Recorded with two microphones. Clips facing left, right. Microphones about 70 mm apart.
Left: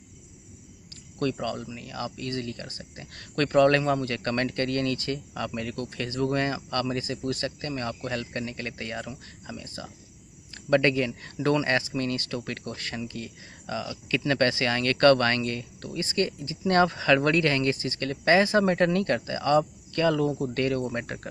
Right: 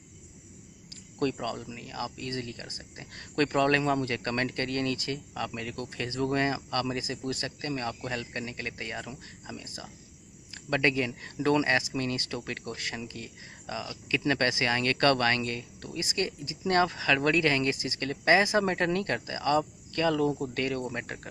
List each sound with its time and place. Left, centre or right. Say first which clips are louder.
1.4 s speech: left 3 dB; centre
5.8 s speech: left 2 dB; right; by 21.3 s centre